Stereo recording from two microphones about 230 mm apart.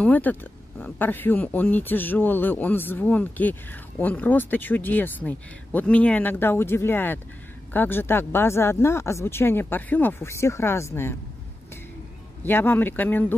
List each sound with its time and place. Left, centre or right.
0.0 s speech: centre
12.4 s speech: centre